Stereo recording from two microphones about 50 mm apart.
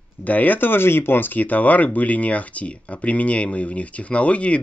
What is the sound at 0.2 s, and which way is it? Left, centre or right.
Speech, left.